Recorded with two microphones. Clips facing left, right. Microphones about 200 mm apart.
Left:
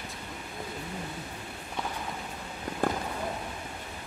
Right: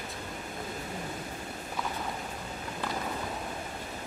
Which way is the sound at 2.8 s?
50° left (ahead or behind).